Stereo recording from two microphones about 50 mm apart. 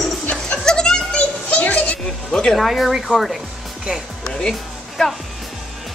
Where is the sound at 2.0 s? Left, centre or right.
Centre.